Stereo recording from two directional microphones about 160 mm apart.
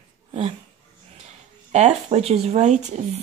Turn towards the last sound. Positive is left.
turn(degrees=-45)  # may be behind; listen again after turning